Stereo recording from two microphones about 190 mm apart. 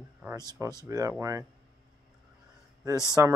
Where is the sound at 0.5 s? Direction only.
20° right (ahead or behind).